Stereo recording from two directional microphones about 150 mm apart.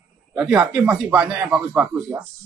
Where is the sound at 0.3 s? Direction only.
5° right (ahead or behind).